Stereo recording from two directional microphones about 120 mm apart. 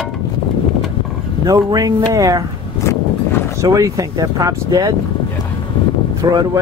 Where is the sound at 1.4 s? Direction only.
35° right (ahead or behind).